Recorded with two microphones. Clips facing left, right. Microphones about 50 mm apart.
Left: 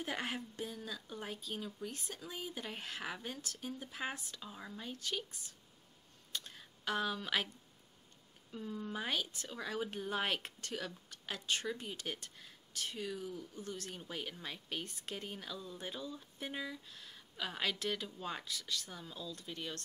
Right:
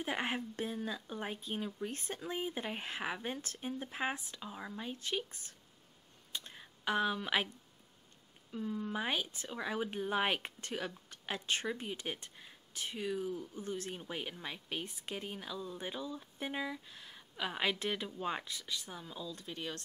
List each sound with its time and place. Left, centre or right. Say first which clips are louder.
0.0 s speech: right 3 dB; right
6.3 s a sound: even; centre
8.5 s speech: right 4 dB; centre
9.0 s speech: right 2 dB; right